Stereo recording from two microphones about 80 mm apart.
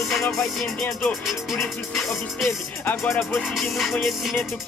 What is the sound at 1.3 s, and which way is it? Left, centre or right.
Music, centre.